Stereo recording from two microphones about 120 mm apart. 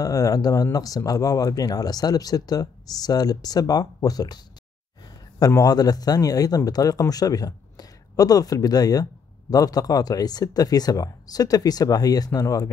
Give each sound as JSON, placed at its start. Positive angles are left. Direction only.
{"t": 0.0, "sound": "speech", "side_deg": 30}
{"t": 5.4, "sound": "speech", "side_deg": 30}